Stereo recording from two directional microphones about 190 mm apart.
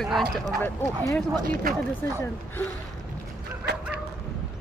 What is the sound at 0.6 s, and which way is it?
Speech, 10° left (ahead or behind).